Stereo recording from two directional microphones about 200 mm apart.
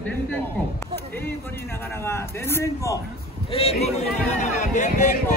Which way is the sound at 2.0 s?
10° left (ahead or behind).